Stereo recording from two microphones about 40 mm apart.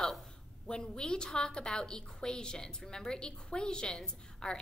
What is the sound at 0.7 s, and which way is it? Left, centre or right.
A woman's voice, centre.